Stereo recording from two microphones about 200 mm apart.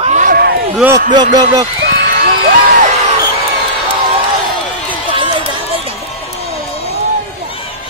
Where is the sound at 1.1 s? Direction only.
20° right (ahead or behind).